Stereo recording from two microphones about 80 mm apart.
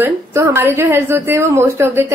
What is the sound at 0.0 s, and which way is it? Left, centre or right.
A woman's voice, right.